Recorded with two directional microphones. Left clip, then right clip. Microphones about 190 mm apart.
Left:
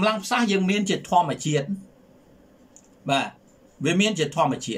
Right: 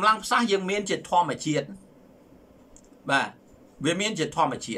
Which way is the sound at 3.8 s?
15° left (ahead or behind).